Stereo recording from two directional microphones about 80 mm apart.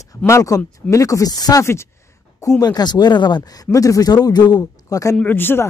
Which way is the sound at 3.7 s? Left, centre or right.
Left.